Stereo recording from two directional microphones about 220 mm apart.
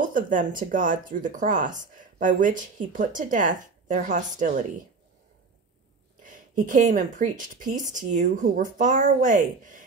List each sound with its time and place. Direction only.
0.0 s speech: 35° right (ahead or behind)
6.2 s a woman's voice: 35° right (ahead or behind)